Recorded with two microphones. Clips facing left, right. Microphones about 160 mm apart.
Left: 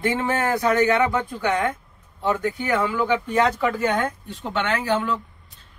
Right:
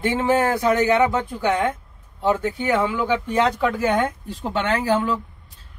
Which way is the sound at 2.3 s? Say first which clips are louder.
Right 2 dB; 20° right (ahead or behind).